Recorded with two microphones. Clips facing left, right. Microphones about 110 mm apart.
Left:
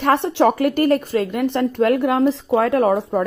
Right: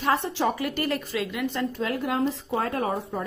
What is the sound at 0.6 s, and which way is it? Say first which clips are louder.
Speech: left 11 dB; 50° left (ahead or behind).